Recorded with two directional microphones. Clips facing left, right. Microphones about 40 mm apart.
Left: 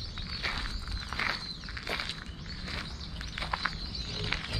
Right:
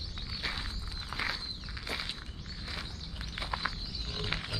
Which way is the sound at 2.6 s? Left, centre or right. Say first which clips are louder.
Left 2 dB; centre.